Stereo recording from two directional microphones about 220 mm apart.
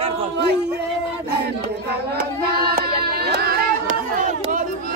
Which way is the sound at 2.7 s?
45° right (ahead or behind).